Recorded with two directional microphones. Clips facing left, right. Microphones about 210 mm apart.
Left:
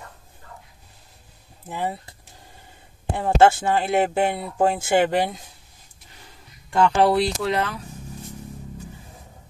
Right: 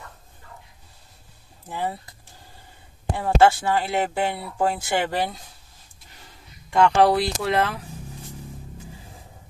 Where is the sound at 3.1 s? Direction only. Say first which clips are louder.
Left 1 dB; 20° left (ahead or behind).